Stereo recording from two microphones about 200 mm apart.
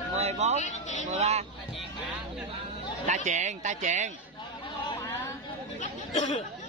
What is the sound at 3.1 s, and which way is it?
Speech, 35° right (ahead or behind).